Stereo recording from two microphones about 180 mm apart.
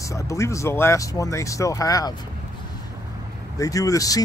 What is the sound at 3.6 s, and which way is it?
Speech, 20° left (ahead or behind).